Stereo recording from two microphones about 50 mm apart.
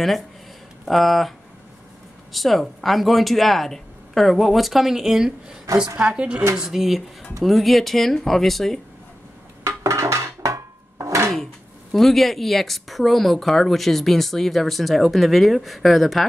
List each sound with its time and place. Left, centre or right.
0.8 s speech: centre
2.3 s a woman's voice: centre
9.6 s a sound: right
11.9 s speech: centre